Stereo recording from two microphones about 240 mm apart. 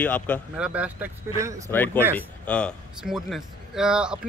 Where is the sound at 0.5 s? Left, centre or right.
Centre.